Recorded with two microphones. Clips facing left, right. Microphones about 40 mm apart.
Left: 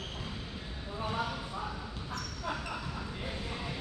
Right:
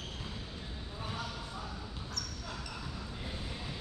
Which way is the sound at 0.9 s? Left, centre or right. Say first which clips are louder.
Left 7 dB; left.